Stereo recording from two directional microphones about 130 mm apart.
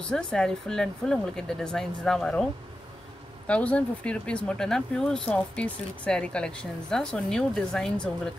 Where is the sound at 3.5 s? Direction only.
10° left (ahead or behind).